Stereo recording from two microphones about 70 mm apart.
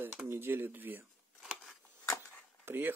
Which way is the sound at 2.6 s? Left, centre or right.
Right.